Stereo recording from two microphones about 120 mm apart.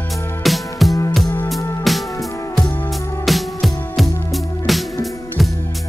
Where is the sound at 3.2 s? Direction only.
Centre (ahead or behind).